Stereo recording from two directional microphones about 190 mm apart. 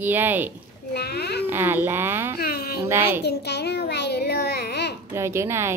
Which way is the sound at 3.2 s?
60° left (ahead or behind).